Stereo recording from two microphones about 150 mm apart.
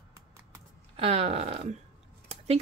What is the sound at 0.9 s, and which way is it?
Speech, 40° right (ahead or behind).